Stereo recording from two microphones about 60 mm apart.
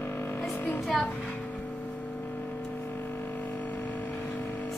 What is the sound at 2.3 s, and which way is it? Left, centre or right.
Vehicle, left.